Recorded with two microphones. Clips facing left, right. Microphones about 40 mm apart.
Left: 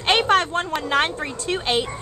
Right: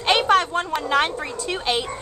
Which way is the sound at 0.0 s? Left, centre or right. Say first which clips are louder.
Even; centre.